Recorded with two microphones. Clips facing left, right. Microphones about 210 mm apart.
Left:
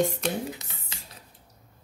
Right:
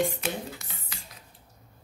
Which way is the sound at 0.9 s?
25° left (ahead or behind).